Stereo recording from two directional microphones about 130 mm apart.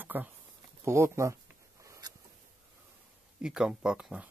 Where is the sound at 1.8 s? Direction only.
25° right (ahead or behind).